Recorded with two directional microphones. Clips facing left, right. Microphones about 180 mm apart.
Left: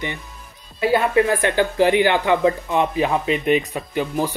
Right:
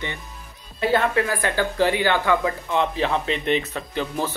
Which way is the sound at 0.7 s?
15° left (ahead or behind).